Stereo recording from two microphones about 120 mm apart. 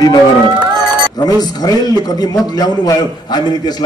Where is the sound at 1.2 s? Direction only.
35° left (ahead or behind).